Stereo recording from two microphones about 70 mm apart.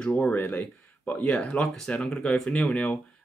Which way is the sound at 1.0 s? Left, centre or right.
Centre.